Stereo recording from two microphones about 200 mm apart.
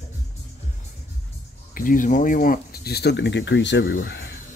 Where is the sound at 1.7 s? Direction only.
45° left (ahead or behind).